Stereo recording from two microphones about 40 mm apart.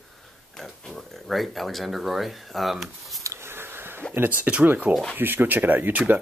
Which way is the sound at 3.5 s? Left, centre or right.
Right.